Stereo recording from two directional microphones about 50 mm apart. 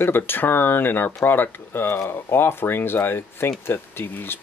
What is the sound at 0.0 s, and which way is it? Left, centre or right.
Speech, left.